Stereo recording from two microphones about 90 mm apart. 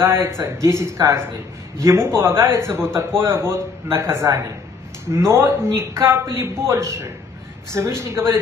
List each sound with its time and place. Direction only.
0.0 s a man's voice: 30° right (ahead or behind)